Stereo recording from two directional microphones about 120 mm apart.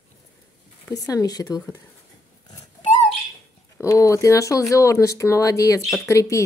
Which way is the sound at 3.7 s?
25° left (ahead or behind).